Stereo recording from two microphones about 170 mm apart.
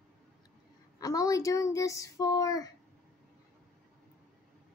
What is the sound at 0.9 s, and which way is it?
Speech, 20° left (ahead or behind).